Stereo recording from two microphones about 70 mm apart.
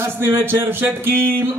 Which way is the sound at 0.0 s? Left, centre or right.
Right.